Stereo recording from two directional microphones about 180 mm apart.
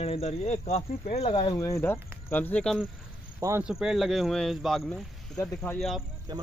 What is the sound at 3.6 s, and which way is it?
Speech, 5° right (ahead or behind).